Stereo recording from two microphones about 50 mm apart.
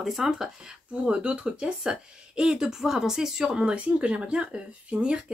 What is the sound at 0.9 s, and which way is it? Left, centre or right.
Speech, right.